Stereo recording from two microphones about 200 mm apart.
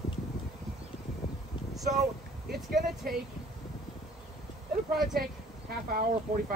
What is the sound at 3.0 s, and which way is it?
Speech, 45° right (ahead or behind).